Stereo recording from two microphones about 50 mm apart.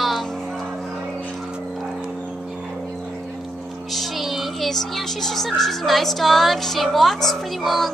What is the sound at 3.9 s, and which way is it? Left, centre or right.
Music, centre.